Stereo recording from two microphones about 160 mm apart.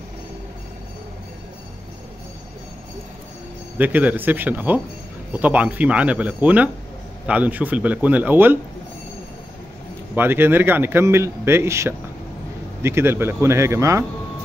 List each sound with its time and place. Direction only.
3.7 s speech: 10° right (ahead or behind)
10.1 s speech: 15° right (ahead or behind)